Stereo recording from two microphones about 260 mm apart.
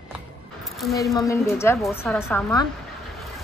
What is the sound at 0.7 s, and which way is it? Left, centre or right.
Speech, centre.